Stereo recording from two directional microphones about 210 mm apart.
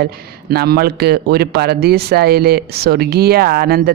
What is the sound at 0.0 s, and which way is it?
A man's voice, 50° right (ahead or behind).